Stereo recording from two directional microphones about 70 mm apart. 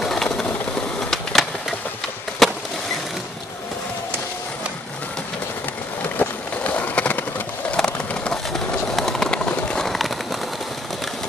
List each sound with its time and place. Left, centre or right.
0.0 s vehicle: centre
1.1 s a sound: centre
2.4 s skateboard: centre
6.1 s run: left
7.7 s skateboard: centre
9.8 s a sound: centre